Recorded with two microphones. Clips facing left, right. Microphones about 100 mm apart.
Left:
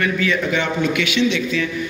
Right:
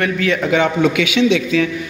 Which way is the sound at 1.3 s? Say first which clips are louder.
Right 5 dB; 90° right.